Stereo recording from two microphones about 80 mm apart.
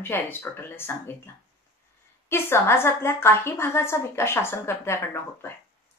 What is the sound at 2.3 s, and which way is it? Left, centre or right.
A woman's voice, left.